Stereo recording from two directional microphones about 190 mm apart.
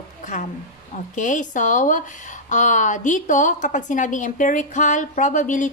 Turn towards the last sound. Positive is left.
turn(degrees=40)  # may be behind; listen again after turning